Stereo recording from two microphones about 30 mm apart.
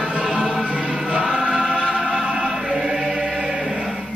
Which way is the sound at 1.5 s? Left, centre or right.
Right.